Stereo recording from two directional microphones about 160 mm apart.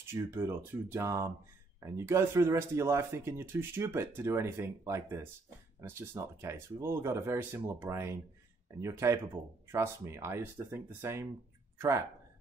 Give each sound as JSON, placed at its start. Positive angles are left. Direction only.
{"t": 0.0, "sound": "speech", "side_deg": -15}